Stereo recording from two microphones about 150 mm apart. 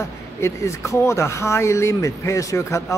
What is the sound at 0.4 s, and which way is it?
Speech, 20° left (ahead or behind).